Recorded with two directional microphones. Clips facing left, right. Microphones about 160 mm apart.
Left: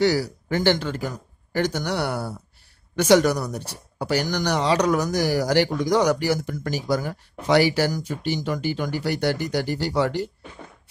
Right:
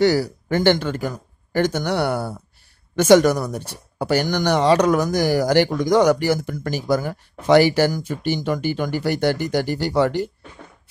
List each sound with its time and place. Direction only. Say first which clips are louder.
0.0 s speech: right 3 dB; 50° right (ahead or behind)